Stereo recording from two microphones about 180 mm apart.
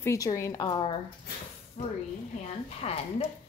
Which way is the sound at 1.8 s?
45° left (ahead or behind).